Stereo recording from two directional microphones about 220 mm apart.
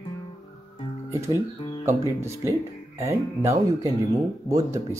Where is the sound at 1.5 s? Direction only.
20° left (ahead or behind).